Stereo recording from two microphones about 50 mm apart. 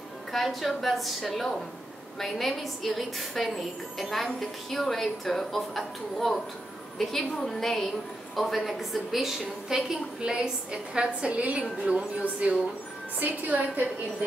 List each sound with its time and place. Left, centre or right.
0.3 s a woman's voice: centre; by 12.5 s right
13.2 s a woman's voice: right